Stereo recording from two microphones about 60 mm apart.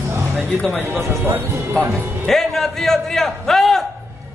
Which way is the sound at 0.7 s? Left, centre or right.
Right.